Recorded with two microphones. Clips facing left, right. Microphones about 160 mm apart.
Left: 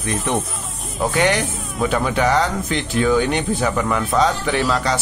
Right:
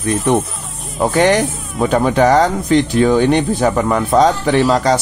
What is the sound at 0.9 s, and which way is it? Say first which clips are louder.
Speech: right 6 dB; 45° right (ahead or behind).